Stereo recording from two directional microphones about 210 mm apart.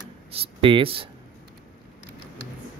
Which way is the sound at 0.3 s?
25° right (ahead or behind).